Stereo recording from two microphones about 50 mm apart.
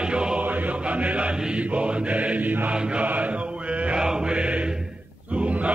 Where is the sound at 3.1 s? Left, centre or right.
Right.